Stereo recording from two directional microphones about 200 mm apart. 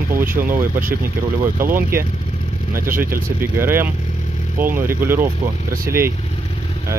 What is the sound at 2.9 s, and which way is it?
Speech, 45° right (ahead or behind).